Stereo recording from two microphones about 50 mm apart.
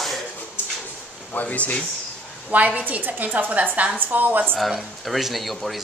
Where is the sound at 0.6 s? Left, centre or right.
Left.